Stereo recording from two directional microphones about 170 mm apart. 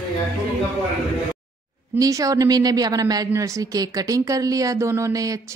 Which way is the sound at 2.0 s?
20° right (ahead or behind).